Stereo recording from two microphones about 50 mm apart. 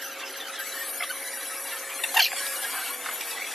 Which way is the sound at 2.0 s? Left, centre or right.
Centre.